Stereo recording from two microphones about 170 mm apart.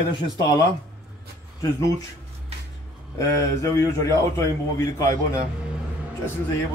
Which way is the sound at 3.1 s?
20° left (ahead or behind).